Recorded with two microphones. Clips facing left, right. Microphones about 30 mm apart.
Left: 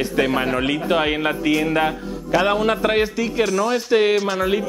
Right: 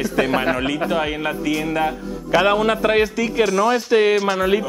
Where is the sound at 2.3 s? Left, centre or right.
Centre.